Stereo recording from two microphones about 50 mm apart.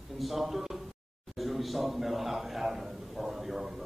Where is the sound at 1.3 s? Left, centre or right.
Centre.